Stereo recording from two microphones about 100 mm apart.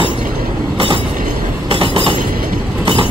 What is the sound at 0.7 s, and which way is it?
Train, 60° right (ahead or behind).